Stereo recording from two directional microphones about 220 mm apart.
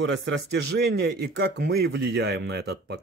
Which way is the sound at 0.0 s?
60° right (ahead or behind).